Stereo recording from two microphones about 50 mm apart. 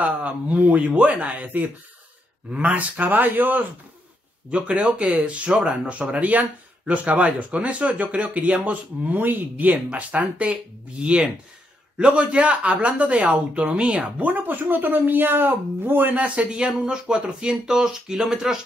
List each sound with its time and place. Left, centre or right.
0.0 s speech: right
4.5 s speech: right
9.8 s speech: right
14.2 s speech: right; by 18.6 s centre